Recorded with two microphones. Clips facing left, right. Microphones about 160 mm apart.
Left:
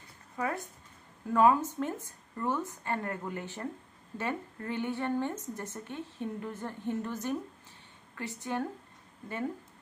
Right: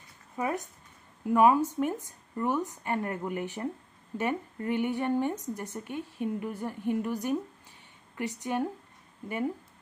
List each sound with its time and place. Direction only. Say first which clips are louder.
0.4 s speech: right 3 dB; 15° right (ahead or behind)